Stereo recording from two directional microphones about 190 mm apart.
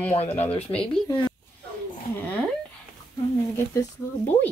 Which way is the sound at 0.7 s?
20° left (ahead or behind).